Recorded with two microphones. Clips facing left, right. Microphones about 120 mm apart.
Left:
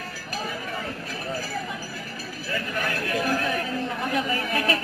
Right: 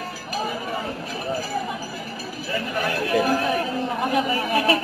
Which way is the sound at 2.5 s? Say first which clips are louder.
Right 4 dB; 20° right (ahead or behind).